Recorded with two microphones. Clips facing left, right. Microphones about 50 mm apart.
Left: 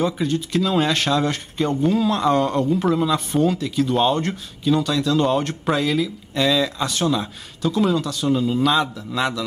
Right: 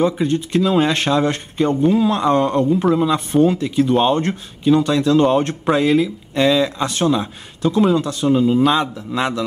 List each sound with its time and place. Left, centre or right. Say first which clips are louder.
0.0 s speech: right 4 dB; right
3.5 s speech: right 4 dB; right
8.3 s speech: right 5 dB; centre